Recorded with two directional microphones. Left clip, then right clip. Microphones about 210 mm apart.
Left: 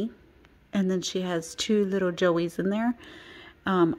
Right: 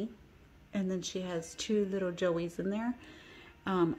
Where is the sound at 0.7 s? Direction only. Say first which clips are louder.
Left 8 dB; 40° left (ahead or behind).